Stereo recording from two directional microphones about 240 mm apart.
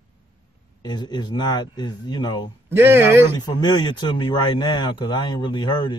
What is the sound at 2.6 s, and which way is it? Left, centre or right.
Speech, centre.